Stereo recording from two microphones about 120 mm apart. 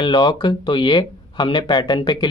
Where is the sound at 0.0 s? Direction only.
40° left (ahead or behind).